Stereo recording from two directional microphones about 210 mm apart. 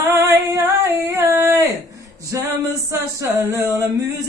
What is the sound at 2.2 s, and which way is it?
Male singing, 15° right (ahead or behind).